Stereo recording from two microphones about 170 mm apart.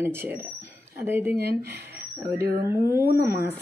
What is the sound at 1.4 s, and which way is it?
Speech, 65° right (ahead or behind).